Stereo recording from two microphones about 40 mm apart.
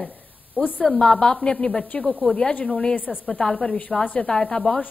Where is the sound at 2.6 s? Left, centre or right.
Centre.